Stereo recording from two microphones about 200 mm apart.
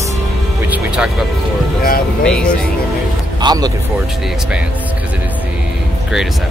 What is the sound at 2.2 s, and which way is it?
Speech, 5° left (ahead or behind).